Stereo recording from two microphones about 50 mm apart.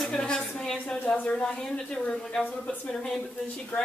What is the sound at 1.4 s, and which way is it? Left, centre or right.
A woman's voice, centre.